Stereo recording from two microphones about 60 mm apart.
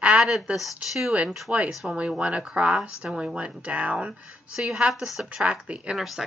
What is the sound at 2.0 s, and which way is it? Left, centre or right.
A woman's voice, centre.